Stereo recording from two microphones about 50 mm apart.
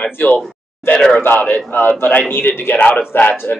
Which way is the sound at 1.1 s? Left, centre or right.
Left.